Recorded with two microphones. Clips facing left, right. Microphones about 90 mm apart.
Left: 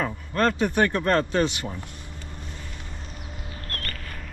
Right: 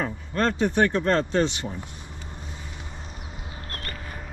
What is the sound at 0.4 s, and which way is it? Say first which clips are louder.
Speech: even; 55° left (ahead or behind).